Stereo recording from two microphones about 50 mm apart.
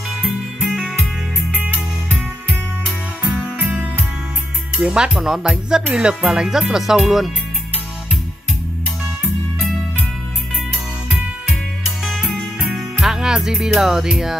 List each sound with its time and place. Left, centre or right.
0.1 s music: centre
0.6 s music: right
4.7 s music: centre
6.7 s speech: centre
9.2 s music: centre
11.1 s music: centre